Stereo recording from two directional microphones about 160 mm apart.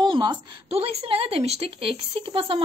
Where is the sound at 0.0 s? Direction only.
30° right (ahead or behind).